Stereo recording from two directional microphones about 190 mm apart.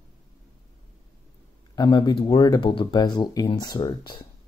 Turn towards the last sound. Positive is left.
turn(degrees=25)  # may be behind; listen again after turning